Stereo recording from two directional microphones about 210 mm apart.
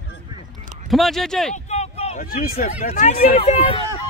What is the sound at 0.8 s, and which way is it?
Speech, centre (ahead or behind).